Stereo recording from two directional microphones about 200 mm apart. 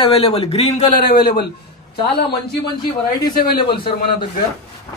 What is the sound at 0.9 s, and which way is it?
Speech, 50° left (ahead or behind).